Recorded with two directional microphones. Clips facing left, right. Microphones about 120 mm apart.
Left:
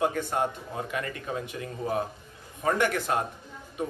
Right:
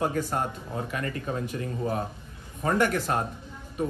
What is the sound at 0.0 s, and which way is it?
Speech, 40° right (ahead or behind).